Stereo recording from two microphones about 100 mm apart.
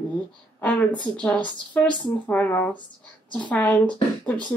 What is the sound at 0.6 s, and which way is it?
Speech, 15° left (ahead or behind).